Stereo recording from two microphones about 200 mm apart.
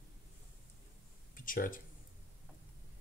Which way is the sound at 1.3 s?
45° left (ahead or behind).